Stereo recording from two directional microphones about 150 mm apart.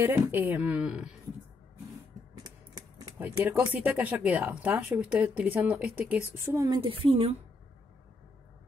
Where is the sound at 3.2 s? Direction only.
10° right (ahead or behind).